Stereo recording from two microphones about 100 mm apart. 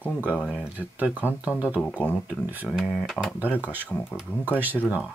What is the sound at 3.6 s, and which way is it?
Speech, 20° right (ahead or behind).